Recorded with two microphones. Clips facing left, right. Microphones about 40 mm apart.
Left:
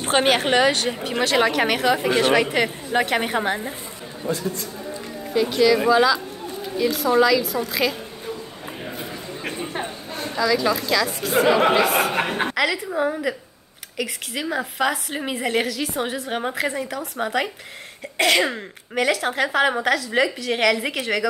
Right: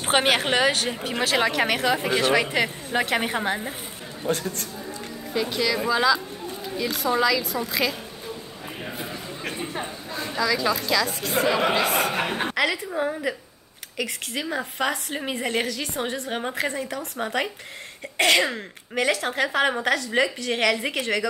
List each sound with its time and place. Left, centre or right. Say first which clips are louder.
0.0 s a woman's voice: left 2 dB; centre
4.3 s speech: left 1 dB; right
5.3 s a woman's voice: left 7 dB; centre
9.4 s a sound: left 2 dB; centre
10.3 s a woman's voice: left 3 dB; centre
11.4 s speech: left 5 dB; centre
11.8 s a woman's voice: left 3 dB; centre